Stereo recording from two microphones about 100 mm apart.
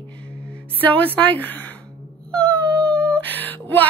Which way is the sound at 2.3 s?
10° left (ahead or behind).